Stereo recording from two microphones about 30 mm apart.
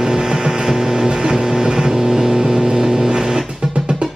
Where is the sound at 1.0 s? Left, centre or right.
Right.